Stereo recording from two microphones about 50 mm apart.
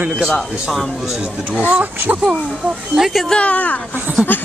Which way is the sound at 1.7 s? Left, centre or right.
Right.